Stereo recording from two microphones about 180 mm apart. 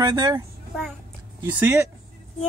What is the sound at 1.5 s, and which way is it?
Speech, 10° right (ahead or behind).